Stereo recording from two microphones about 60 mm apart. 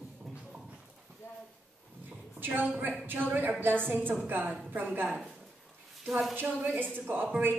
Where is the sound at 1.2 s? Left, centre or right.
Left.